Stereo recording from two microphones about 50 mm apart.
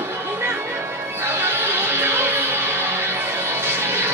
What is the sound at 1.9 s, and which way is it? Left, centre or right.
Music, right.